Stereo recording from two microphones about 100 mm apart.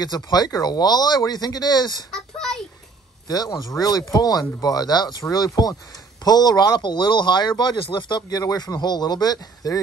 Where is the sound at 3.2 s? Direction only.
40° left (ahead or behind).